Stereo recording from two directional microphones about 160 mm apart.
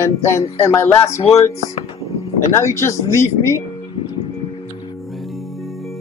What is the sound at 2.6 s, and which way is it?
Speech, 15° left (ahead or behind).